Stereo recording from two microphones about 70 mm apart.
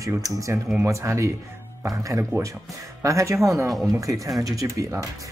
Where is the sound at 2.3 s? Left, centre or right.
Right.